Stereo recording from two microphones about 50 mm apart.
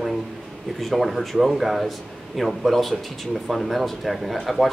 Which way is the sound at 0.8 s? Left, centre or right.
Centre.